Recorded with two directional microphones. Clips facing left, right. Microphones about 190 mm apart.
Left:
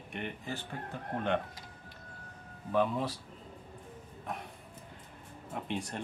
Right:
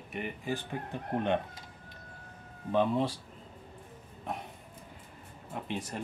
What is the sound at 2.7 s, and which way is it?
Speech, 25° right (ahead or behind).